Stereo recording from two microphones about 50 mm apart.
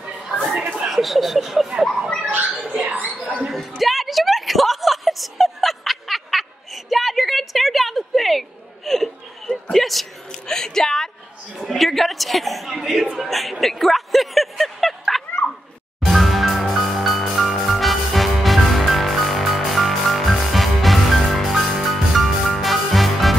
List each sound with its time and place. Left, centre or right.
0.6 s a sound: right
0.8 s speech: centre
2.2 s speech: right
3.5 s a sound: centre
11.5 s a woman's voice: centre
16.1 s music: centre